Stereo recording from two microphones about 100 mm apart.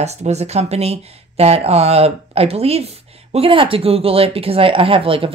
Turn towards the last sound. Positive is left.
turn(degrees=-65)  # may be behind; listen again after turning